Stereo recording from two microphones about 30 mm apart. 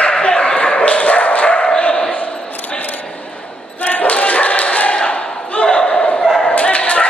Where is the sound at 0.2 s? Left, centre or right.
Left.